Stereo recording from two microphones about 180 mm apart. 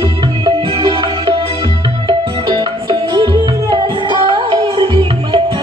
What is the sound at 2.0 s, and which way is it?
Music, 25° right (ahead or behind).